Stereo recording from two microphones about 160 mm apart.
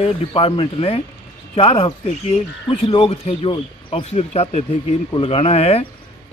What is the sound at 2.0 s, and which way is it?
Speech, 50° left (ahead or behind).